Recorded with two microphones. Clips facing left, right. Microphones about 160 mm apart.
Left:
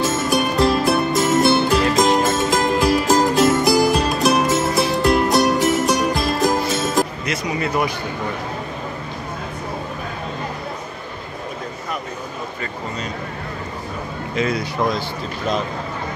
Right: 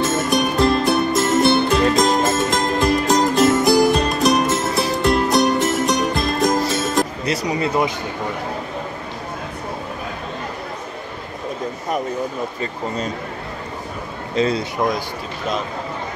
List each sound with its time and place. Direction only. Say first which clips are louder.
0.0 s music: right 1 dB; centre (ahead or behind)
7.2 s a sound: right 2 dB; 30° right (ahead or behind)
14.3 s speech: right 3 dB; 30° right (ahead or behind)